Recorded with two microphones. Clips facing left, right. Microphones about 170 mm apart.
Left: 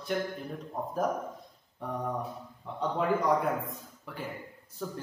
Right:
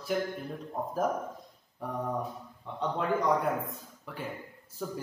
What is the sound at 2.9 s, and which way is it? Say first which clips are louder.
Speech: left 1 dB; centre (ahead or behind).